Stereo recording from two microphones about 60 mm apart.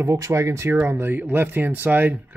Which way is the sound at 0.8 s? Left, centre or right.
Right.